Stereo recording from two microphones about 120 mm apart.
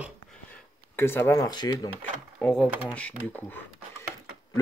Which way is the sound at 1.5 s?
35° left (ahead or behind).